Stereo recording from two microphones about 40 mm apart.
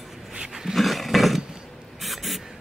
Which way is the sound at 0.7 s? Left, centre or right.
Centre.